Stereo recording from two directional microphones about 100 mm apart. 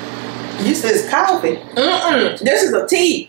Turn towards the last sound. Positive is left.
turn(degrees=-10)  # may be behind; listen again after turning